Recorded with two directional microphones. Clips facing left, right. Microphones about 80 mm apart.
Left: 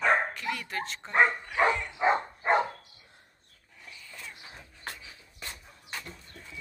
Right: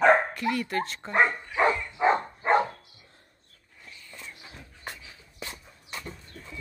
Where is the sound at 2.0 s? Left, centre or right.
Centre.